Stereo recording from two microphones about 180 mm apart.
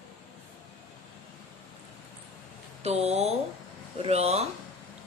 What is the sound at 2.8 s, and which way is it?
Speech, 35° right (ahead or behind).